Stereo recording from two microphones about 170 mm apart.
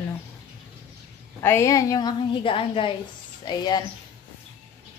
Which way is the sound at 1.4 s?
15° left (ahead or behind).